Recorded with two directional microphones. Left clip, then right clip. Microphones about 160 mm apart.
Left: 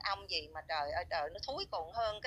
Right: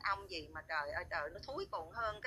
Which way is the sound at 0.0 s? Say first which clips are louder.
Left 2 dB; 40° left (ahead or behind).